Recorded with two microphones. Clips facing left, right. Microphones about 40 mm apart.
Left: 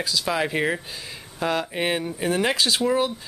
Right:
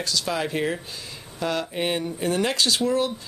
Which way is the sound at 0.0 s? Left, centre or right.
Centre.